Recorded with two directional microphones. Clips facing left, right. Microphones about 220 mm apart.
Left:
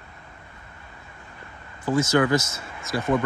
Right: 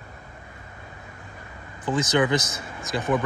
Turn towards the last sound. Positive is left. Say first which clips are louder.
# left 1 dB
turn(degrees=-15)  # may be behind; listen again after turning